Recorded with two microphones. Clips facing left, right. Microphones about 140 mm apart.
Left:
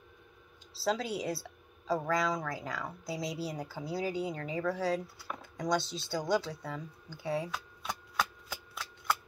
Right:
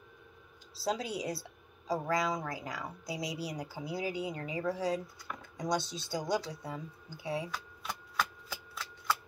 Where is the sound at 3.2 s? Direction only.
25° left (ahead or behind).